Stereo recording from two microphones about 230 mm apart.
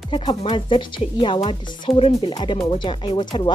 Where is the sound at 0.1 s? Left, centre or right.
Left.